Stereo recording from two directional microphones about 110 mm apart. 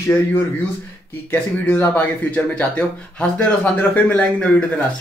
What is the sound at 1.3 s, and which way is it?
Speech, 20° left (ahead or behind).